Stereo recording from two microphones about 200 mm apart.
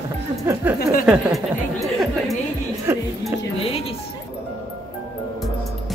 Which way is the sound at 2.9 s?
10° right (ahead or behind).